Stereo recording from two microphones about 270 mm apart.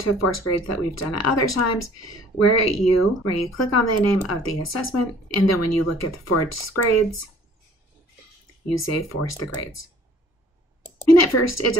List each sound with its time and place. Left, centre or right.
0.0 s speech: left
8.6 s speech: left
11.3 s speech: left